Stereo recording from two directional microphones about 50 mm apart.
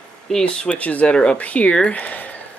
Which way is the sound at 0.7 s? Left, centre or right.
Left.